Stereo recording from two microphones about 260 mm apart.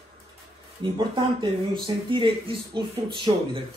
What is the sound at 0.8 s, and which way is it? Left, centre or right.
Speech, centre.